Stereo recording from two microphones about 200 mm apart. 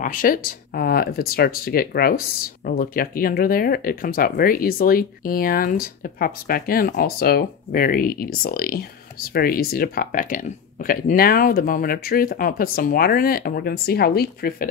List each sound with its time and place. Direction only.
0.0 s speech: 45° left (ahead or behind)